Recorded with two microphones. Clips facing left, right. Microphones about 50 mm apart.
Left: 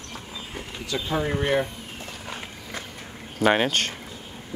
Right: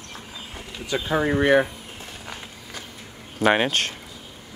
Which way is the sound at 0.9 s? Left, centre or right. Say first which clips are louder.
Right 4 dB; right.